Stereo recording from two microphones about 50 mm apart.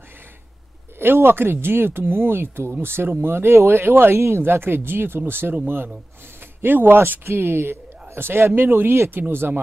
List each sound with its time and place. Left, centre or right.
0.9 s speech: right